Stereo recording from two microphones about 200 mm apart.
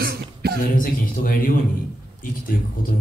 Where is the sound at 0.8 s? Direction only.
45° left (ahead or behind).